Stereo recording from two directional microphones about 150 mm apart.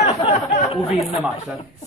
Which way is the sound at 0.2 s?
35° left (ahead or behind).